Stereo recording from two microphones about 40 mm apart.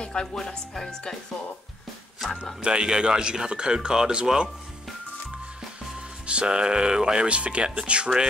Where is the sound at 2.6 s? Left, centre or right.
Right.